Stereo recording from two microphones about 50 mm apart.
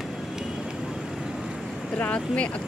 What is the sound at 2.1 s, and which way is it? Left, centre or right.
Speech, left.